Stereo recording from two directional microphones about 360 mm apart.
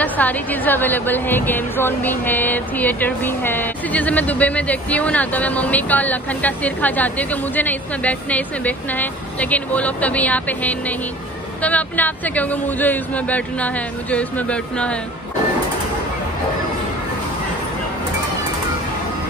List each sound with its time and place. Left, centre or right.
0.0 s a woman's voice: centre